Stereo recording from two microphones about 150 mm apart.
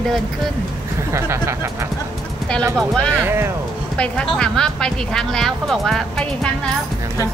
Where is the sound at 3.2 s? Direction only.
15° right (ahead or behind).